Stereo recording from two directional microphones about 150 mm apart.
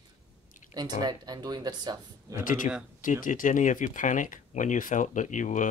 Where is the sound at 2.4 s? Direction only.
60° left (ahead or behind).